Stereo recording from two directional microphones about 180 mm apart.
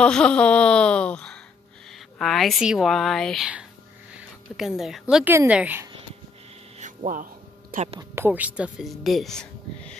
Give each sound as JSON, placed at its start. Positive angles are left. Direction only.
{"t": 0.0, "sound": "speech", "side_deg": 5}
{"t": 6.8, "sound": "a sound", "side_deg": -45}
{"t": 7.7, "sound": "speech", "side_deg": -35}
{"t": 8.0, "sound": "speech", "side_deg": -15}